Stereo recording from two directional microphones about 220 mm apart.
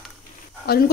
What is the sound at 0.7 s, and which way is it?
Speech, 45° left (ahead or behind).